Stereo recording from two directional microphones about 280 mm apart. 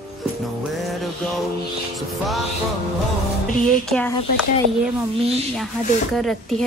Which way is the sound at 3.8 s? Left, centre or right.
Centre.